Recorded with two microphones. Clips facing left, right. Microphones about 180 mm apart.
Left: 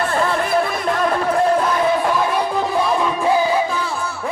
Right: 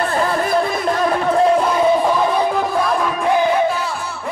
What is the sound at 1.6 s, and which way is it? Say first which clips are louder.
Crowd: right 3 dB; 15° right (ahead or behind).